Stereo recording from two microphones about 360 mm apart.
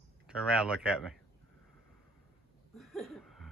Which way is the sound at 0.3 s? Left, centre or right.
Centre.